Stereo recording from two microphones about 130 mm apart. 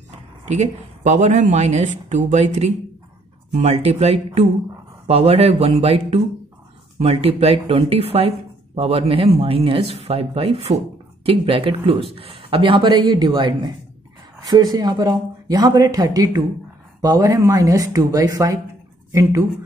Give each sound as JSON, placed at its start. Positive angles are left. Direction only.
{"t": 0.5, "sound": "speech", "side_deg": -65}